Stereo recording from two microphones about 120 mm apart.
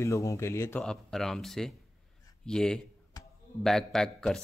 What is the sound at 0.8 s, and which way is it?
Speech, 5° left (ahead or behind).